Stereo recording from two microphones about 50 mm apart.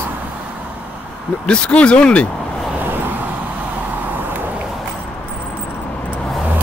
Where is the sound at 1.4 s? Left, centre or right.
Centre.